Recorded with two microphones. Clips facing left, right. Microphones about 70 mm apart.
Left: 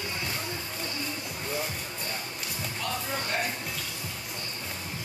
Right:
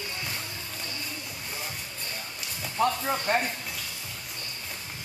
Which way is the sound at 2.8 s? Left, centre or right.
Right.